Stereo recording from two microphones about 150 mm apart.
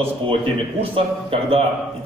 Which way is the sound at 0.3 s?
40° right (ahead or behind).